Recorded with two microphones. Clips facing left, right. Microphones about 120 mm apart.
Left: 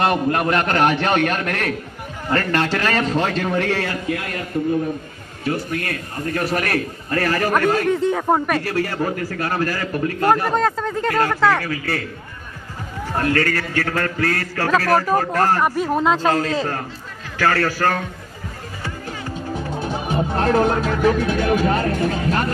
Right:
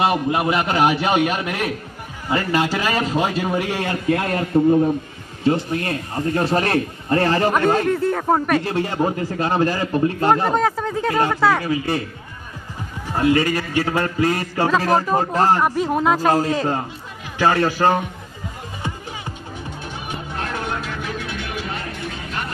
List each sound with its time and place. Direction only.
0.0 s a man's voice: 5° right (ahead or behind)
4.1 s a man's voice: 35° right (ahead or behind)
8.0 s speech: centre (ahead or behind)
8.5 s a man's voice: 20° right (ahead or behind)
15.6 s a man's voice: centre (ahead or behind); by 18.0 s 20° right (ahead or behind)
19.8 s speech: 35° left (ahead or behind)